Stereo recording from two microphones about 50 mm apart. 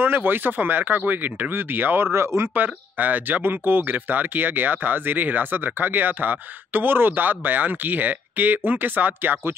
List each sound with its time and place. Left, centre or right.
0.0 s speech: right
2.1 s speech: right
2.5 s speech: right